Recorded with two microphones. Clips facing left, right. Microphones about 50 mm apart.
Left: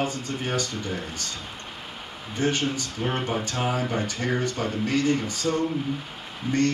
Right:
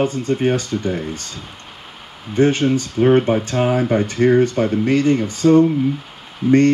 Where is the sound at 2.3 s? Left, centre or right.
Right.